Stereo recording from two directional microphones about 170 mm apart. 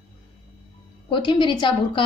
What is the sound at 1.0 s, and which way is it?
Speech, 30° left (ahead or behind).